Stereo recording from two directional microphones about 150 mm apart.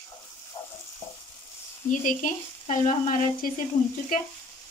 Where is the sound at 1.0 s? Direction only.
20° left (ahead or behind).